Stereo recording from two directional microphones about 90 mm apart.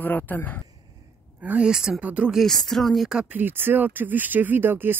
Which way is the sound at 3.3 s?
25° right (ahead or behind).